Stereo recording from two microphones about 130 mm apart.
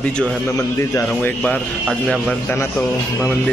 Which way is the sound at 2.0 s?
5° right (ahead or behind).